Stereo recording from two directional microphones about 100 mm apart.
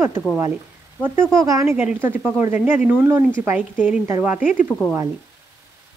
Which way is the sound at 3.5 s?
15° right (ahead or behind).